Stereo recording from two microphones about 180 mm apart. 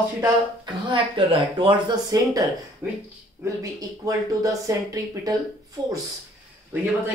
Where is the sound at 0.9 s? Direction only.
30° right (ahead or behind).